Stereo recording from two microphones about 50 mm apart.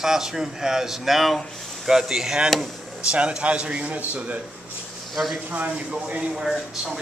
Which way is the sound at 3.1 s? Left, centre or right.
Right.